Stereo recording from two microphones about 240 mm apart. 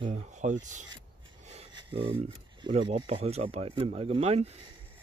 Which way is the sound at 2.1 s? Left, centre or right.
Right.